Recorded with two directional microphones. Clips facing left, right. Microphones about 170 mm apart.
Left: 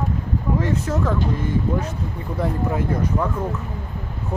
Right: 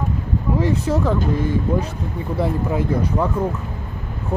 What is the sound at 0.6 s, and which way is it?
Speech, 10° right (ahead or behind).